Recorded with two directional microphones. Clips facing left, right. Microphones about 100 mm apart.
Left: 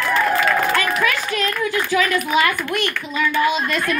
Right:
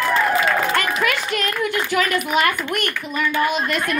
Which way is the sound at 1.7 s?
55° right (ahead or behind).